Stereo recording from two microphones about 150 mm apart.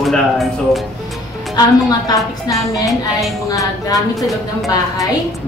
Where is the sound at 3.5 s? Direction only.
25° left (ahead or behind).